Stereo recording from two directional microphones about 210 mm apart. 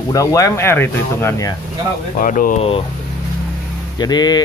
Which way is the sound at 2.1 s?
40° left (ahead or behind).